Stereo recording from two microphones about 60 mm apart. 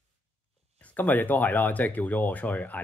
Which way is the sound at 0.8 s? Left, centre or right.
Left.